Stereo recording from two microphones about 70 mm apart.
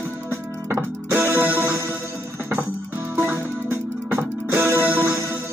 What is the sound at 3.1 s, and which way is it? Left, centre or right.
Music, right.